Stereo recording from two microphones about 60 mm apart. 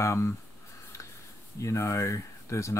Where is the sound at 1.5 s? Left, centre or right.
Left.